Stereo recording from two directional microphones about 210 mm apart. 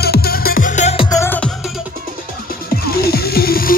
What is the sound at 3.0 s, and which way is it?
Music, 45° left (ahead or behind).